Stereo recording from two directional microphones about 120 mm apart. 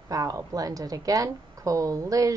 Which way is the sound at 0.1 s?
30° right (ahead or behind).